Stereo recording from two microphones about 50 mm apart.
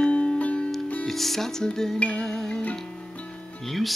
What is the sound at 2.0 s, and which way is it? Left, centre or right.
Music, left.